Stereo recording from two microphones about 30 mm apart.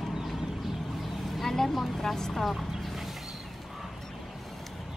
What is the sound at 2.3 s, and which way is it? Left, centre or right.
Speech, centre.